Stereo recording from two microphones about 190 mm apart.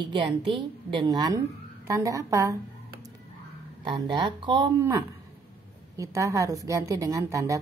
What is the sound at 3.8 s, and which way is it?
Speech, 25° right (ahead or behind).